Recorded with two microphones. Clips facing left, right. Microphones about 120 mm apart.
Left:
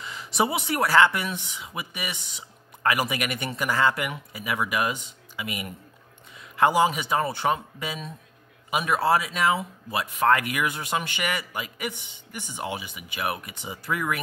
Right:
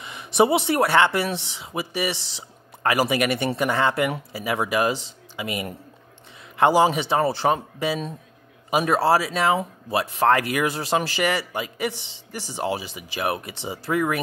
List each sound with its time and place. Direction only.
0.0 s a man's voice: 20° right (ahead or behind)
11.9 s speech: 90° right
12.3 s speech: 35° right (ahead or behind)